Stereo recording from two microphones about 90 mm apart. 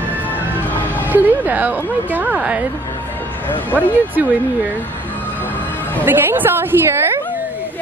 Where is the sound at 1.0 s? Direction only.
20° right (ahead or behind).